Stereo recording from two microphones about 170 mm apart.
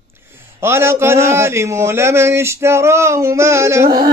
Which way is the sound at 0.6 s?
15° right (ahead or behind).